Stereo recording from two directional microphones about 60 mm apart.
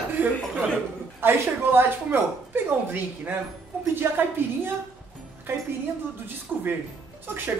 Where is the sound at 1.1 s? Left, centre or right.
Right.